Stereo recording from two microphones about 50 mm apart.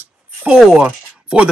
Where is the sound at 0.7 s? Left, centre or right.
Centre.